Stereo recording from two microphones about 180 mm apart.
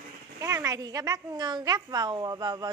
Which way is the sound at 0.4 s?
15° right (ahead or behind).